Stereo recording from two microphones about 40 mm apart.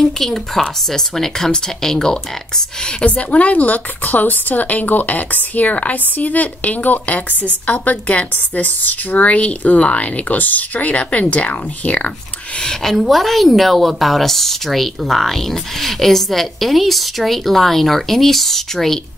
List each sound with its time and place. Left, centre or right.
0.0 s a woman's voice: centre
3.0 s a woman's voice: left
8.5 s a woman's voice: left
10.2 s a woman's voice: left
12.8 s a woman's voice: centre